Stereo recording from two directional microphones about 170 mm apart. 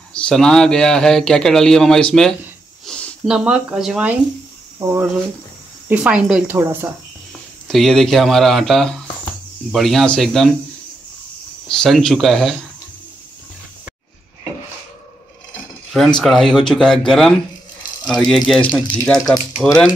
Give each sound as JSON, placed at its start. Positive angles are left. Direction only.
{"t": 0.1, "sound": "a man's voice", "side_deg": 5}
{"t": 2.9, "sound": "a sound", "side_deg": 5}
{"t": 3.3, "sound": "a man's voice", "side_deg": -5}
{"t": 7.6, "sound": "a man's voice", "side_deg": 0}
{"t": 11.7, "sound": "a man's voice", "side_deg": 5}
{"t": 16.2, "sound": "a man's voice", "side_deg": 0}